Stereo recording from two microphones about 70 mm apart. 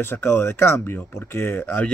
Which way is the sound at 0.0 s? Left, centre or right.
Left.